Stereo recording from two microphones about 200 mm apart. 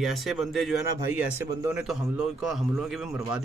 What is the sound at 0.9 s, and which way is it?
Speech, 10° right (ahead or behind).